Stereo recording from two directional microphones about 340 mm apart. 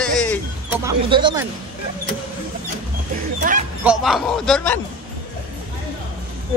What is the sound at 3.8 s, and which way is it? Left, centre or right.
Speech, centre.